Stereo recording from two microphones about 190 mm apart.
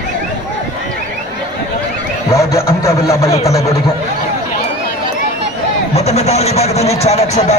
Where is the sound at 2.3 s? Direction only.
15° left (ahead or behind).